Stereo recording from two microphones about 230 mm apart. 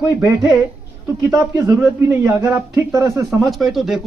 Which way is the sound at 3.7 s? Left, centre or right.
Centre.